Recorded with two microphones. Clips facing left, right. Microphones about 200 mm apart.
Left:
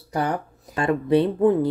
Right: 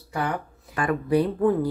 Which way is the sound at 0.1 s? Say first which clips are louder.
Left 3 dB; 40° left (ahead or behind).